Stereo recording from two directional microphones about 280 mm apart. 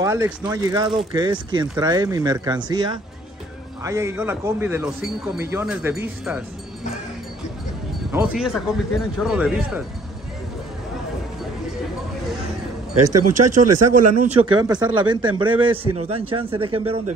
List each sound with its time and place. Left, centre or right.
0.0 s speech: centre
8.4 s speech: centre
12.9 s speech: right
14.2 s a man's voice: centre